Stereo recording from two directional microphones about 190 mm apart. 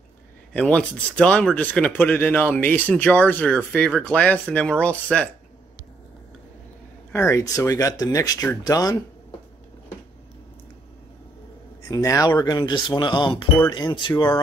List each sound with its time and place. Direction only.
0.5 s speech: 5° left (ahead or behind)
7.1 s speech: 15° left (ahead or behind)
11.9 s speech: 15° left (ahead or behind)